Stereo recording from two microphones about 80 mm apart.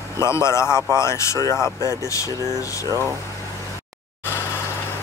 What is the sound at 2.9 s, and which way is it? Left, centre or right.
Speech, right.